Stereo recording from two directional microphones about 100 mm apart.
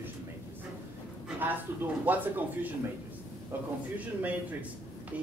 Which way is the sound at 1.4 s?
20° right (ahead or behind).